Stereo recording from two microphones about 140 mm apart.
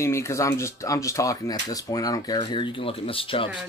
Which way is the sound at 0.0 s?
20° left (ahead or behind).